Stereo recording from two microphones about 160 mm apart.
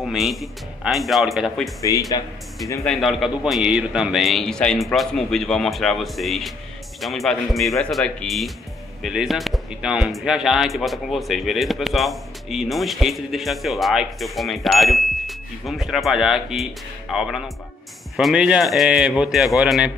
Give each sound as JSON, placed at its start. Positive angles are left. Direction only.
{"t": 0.0, "sound": "speech", "side_deg": 0}
{"t": 1.8, "sound": "speech", "side_deg": 20}
{"t": 2.8, "sound": "speech", "side_deg": 0}